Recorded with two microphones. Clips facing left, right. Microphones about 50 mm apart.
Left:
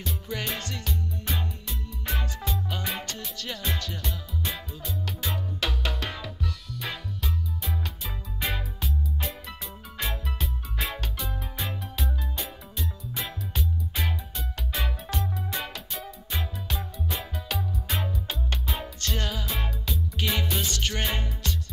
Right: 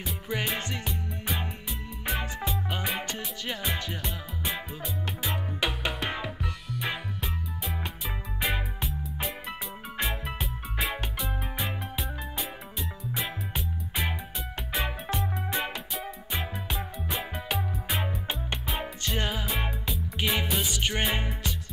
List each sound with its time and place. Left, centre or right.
0.0 s music: centre
8.4 s music: centre
11.5 s music: centre
14.7 s music: right